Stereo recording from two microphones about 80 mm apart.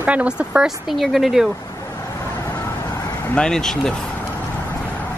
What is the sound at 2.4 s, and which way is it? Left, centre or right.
Vehicle, left.